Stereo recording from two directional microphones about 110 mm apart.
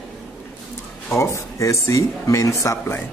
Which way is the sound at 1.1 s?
25° left (ahead or behind).